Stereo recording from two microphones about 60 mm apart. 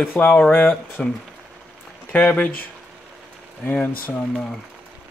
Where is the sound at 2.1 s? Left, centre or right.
Left.